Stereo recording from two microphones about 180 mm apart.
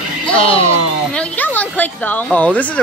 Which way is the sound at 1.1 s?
10° left (ahead or behind).